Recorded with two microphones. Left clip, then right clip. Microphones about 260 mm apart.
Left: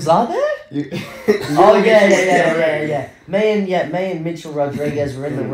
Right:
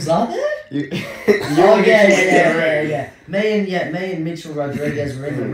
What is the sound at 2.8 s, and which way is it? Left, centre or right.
Speech, left.